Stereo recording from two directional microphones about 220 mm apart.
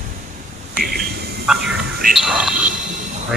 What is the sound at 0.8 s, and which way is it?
Vehicle, 45° right (ahead or behind).